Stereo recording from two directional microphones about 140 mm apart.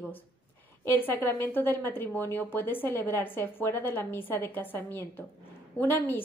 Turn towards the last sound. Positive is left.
turn(degrees=15)  # may be behind; listen again after turning